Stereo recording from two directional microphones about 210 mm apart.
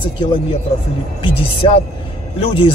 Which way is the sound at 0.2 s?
25° left (ahead or behind).